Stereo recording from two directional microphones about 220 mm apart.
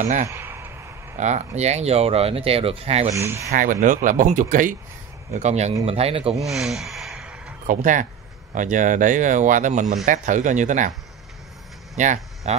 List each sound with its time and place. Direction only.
0.3 s a sound: 10° right (ahead or behind)
1.1 s speech: 30° right (ahead or behind)
3.2 s speech: 15° right (ahead or behind)
3.5 s speech: 35° right (ahead or behind)
6.4 s a sound: centre (ahead or behind)
7.6 s speech: 35° right (ahead or behind)
11.9 s speech: 30° right (ahead or behind)